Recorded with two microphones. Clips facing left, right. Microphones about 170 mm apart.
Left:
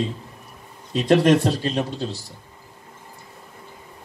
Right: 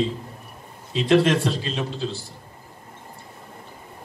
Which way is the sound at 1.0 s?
45° left (ahead or behind).